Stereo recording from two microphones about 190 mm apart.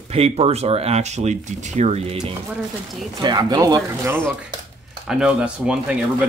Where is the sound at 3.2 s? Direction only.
20° right (ahead or behind).